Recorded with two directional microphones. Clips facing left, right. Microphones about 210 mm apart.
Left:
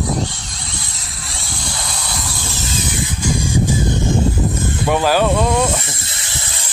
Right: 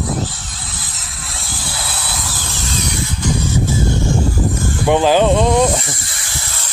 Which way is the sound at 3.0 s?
10° left (ahead or behind).